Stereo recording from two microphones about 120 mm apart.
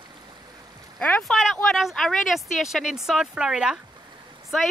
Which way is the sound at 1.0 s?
Centre (ahead or behind).